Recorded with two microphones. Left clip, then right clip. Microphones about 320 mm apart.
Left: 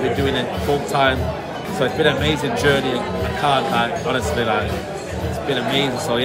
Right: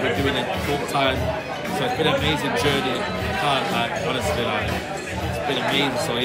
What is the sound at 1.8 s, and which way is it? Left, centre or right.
Speech, centre.